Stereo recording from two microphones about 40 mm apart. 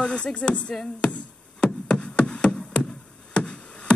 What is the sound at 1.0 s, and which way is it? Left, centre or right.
Music, left.